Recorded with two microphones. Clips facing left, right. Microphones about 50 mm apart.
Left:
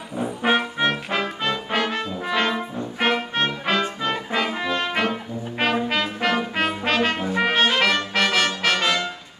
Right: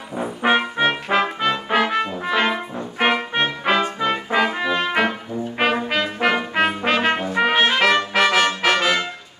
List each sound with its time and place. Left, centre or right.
0.1 s trombone: centre
2.1 s brass instrument: centre
7.3 s trumpet: centre
8.6 s brass instrument: centre